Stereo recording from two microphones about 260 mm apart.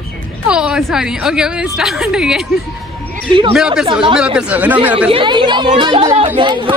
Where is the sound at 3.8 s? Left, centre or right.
Centre.